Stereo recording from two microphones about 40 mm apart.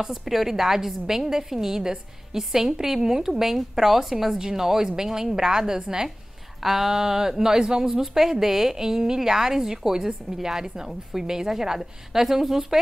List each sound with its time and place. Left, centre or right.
0.0 s a woman's voice: centre
6.6 s a woman's voice: centre